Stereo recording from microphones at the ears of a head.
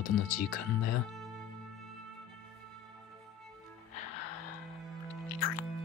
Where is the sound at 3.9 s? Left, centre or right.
Left.